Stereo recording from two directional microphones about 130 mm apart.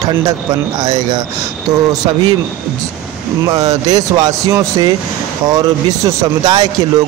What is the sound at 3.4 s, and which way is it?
A man's voice, 25° right (ahead or behind).